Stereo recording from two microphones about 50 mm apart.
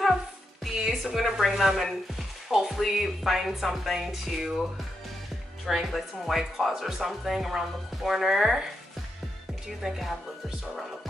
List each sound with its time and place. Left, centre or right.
0.8 s chopping: centre
5.7 s speech: centre
9.7 s speech: centre